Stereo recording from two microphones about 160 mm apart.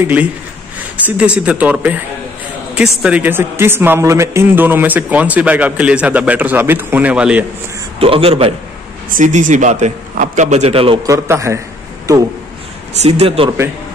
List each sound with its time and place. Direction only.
0.0 s a man's voice: 10° right (ahead or behind)
8.0 s a man's voice: 35° right (ahead or behind)
9.1 s a man's voice: 55° right (ahead or behind); by 11.0 s 35° right (ahead or behind)
11.1 s a man's voice: 20° right (ahead or behind)
12.9 s a man's voice: 40° right (ahead or behind)